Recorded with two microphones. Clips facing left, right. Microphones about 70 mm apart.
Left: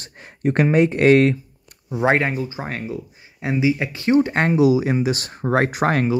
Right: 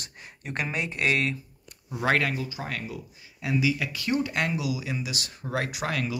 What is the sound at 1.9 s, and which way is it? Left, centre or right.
Speech, left.